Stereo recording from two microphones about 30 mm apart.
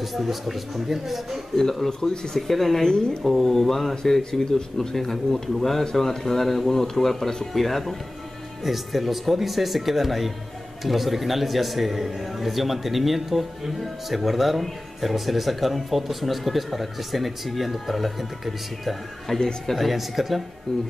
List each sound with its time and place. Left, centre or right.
0.1 s a man's voice: centre
1.5 s speech: centre
2.8 s speech: left
3.3 s a man's voice: centre
19.3 s speech: centre
19.8 s a man's voice: centre